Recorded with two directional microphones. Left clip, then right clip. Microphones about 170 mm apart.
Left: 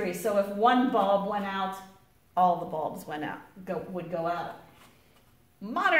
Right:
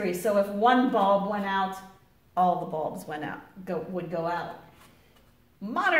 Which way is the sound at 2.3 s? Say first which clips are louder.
Even; 10° left (ahead or behind).